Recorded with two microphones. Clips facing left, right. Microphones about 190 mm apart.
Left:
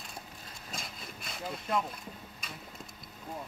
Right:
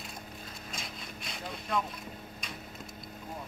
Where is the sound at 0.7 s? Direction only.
Centre (ahead or behind).